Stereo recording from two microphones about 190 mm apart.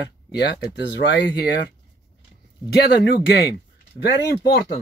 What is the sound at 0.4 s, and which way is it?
A man's voice, 60° left (ahead or behind).